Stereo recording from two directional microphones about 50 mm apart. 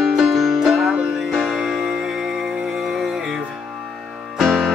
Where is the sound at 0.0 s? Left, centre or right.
Centre.